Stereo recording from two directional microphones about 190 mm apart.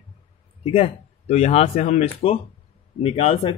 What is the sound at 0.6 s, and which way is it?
Speech, 30° left (ahead or behind).